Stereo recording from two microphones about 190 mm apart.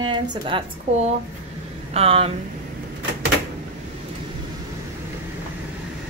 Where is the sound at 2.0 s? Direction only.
30° right (ahead or behind).